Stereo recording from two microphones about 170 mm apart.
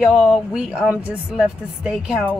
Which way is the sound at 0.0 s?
Centre (ahead or behind).